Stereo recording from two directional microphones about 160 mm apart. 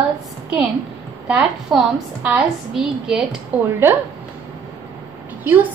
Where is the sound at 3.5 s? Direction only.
10° right (ahead or behind).